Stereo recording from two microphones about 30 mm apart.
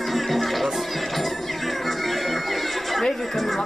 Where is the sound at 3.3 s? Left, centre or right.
Centre.